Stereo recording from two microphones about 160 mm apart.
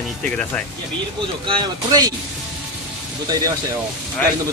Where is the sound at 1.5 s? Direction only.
25° right (ahead or behind).